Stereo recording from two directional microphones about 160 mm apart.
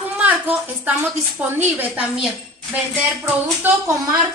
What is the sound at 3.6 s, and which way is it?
Speech, 10° right (ahead or behind).